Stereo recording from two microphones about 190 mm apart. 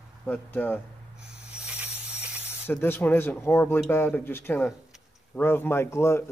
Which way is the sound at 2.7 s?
10° left (ahead or behind).